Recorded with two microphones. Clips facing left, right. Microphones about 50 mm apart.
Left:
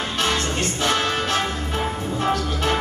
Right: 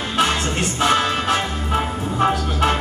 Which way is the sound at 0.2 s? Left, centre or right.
Right.